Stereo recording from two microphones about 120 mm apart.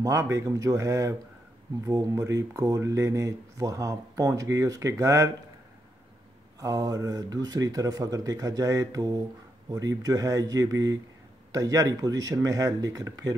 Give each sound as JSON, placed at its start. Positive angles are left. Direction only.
{"t": 0.0, "sound": "speech", "side_deg": -25}
{"t": 6.6, "sound": "speech", "side_deg": -30}